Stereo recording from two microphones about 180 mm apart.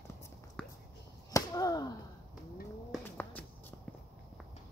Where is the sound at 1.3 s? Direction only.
20° left (ahead or behind).